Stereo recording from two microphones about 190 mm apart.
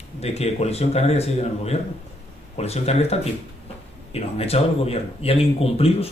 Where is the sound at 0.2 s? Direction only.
35° left (ahead or behind).